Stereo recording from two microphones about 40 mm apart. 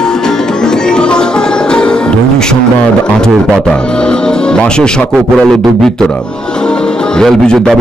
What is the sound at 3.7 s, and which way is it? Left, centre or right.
Speech, left.